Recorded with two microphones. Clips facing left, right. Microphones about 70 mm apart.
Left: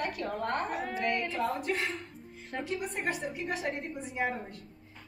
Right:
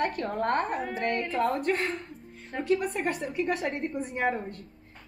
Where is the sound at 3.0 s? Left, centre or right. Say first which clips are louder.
Right 3 dB; centre.